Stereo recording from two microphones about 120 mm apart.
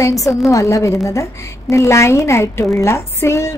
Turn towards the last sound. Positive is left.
turn(degrees=20)  # may be behind; listen again after turning